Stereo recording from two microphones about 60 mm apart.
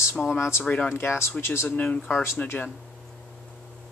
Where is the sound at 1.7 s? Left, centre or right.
Left.